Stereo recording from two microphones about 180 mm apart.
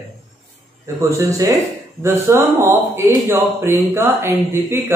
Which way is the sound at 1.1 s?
20° right (ahead or behind).